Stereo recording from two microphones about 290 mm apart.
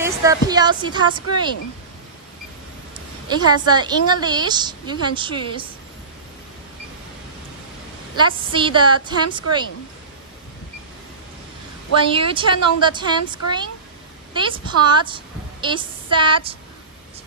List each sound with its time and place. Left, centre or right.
0.0 s a woman's voice: centre
3.3 s a woman's voice: centre
8.3 s a woman's voice: centre
12.0 s a woman's voice: centre